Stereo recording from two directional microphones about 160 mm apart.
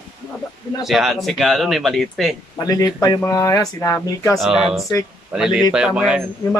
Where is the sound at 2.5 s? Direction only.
25° left (ahead or behind).